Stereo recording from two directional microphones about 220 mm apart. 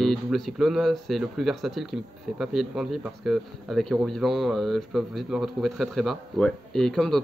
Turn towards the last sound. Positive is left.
turn(degrees=0)  # may be behind; listen again after turning